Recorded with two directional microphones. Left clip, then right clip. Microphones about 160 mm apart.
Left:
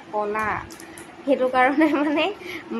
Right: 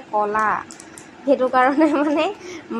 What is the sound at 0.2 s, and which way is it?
Speech, 15° right (ahead or behind).